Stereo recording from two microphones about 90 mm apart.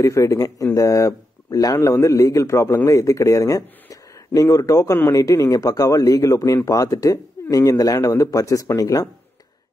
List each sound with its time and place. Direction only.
0.0 s speech: 35° left (ahead or behind)